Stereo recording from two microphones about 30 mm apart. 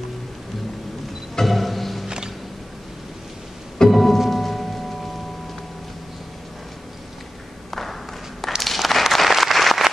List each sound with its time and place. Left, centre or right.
1.4 s music: centre
2.0 s music: right
3.9 s music: centre
7.7 s a sound: centre
8.7 s applause: centre